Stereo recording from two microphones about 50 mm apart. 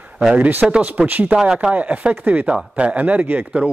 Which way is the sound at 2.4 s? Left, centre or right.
Right.